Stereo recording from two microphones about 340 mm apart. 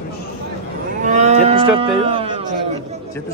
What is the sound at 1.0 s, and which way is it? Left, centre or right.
Moo, right.